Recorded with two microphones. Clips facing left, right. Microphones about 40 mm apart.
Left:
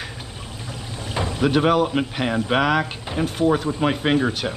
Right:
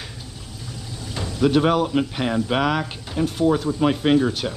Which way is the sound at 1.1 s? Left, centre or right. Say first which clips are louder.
Right 1 dB; left.